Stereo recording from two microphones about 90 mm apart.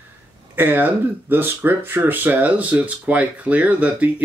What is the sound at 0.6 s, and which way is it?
Speech, 20° right (ahead or behind).